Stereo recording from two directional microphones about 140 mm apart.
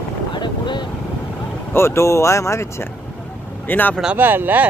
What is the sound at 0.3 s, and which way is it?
Boat, 35° left (ahead or behind).